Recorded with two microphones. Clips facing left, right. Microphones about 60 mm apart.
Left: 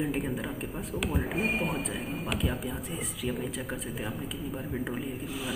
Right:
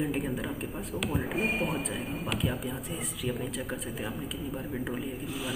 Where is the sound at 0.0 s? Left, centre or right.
Centre.